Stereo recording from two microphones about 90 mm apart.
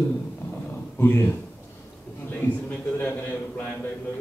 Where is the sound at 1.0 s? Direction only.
25° left (ahead or behind).